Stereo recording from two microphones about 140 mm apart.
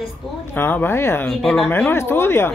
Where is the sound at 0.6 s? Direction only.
15° left (ahead or behind).